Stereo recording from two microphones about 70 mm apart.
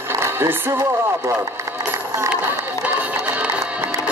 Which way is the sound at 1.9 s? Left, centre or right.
Right.